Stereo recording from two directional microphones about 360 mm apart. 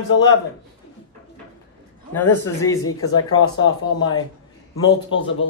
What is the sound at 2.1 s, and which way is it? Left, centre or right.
Speech, centre.